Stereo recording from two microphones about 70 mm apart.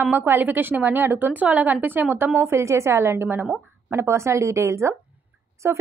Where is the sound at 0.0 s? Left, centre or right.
Right.